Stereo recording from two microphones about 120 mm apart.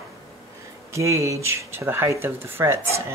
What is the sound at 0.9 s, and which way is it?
Speech, 25° right (ahead or behind).